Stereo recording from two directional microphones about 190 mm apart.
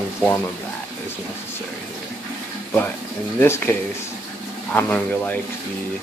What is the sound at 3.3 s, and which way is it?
Speech, 15° left (ahead or behind).